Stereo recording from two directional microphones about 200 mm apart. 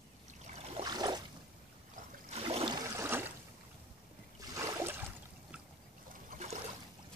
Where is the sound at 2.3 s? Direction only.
30° right (ahead or behind); by 3.3 s 10° right (ahead or behind).